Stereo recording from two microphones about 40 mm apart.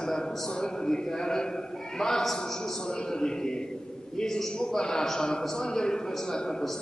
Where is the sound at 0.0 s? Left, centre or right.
Centre.